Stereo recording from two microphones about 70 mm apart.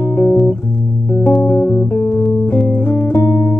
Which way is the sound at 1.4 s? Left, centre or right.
Left.